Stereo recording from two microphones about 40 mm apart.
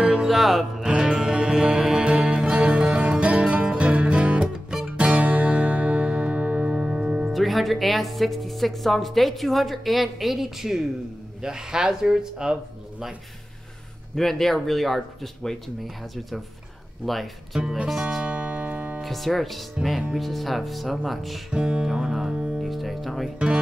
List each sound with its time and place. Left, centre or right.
0.2 s music: centre
0.8 s music: right
4.4 s music: centre
4.8 s music: right
7.2 s speech: centre
14.1 s speech: centre
17.0 s speech: centre
18.2 s music: right
18.9 s speech: centre
21.5 s music: right
22.6 s music: centre